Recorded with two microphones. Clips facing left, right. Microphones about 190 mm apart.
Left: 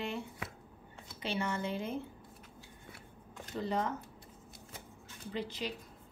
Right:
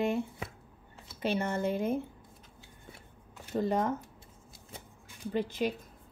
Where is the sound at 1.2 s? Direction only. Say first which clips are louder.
Right 5 dB; 45° right (ahead or behind).